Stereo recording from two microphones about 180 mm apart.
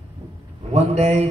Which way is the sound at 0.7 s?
35° right (ahead or behind).